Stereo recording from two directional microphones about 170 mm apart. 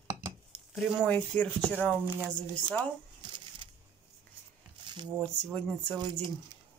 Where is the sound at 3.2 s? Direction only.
25° right (ahead or behind).